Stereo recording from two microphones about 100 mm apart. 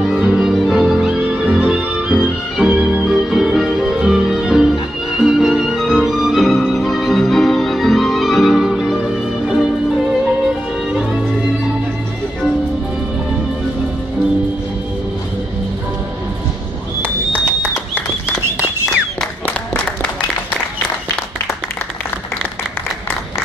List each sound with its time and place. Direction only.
0.0 s music: 10° right (ahead or behind)
11.0 s music: 5° right (ahead or behind)
17.0 s a sound: 15° right (ahead or behind)
19.4 s applause: 10° left (ahead or behind)